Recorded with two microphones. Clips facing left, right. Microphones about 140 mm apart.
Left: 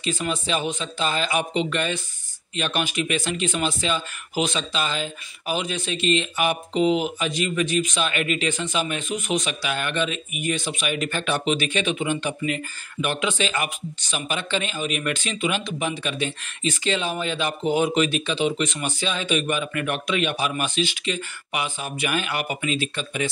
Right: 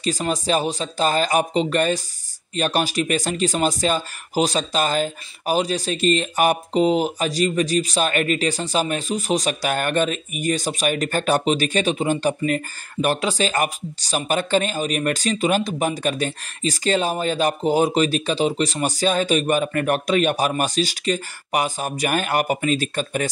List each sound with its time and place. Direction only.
0.0 s speech: 40° right (ahead or behind)